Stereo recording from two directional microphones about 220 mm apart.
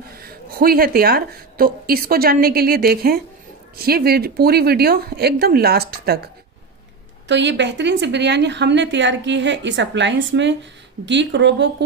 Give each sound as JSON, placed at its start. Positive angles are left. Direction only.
{"t": 0.1, "sound": "a woman's voice", "side_deg": -45}